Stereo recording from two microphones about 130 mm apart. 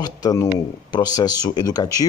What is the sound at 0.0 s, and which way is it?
Speech, 30° left (ahead or behind).